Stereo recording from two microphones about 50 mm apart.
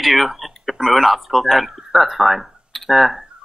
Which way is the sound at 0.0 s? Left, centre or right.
Centre.